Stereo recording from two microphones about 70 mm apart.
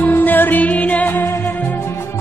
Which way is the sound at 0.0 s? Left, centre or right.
Left.